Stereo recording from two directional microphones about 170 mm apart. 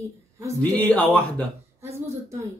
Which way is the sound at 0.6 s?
10° left (ahead or behind).